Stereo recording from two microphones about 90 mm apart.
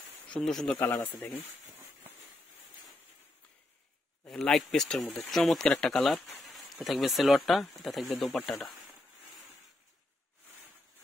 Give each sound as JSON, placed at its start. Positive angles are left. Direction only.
{"t": 0.4, "sound": "speech", "side_deg": 5}
{"t": 0.7, "sound": "speech", "side_deg": 35}
{"t": 4.3, "sound": "speech", "side_deg": 5}
{"t": 5.0, "sound": "speech", "side_deg": 25}
{"t": 5.3, "sound": "speech", "side_deg": 5}